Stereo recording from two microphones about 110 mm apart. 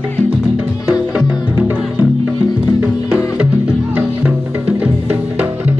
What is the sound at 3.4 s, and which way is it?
Music, 10° right (ahead or behind).